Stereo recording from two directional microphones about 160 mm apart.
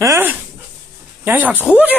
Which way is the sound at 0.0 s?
15° right (ahead or behind).